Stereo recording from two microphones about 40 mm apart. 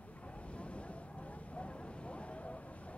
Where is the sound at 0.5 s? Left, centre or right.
Left.